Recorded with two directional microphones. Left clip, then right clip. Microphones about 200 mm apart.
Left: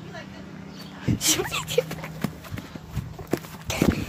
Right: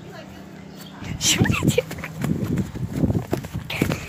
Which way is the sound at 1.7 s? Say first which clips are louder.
Right 1 dB; 10° right (ahead or behind).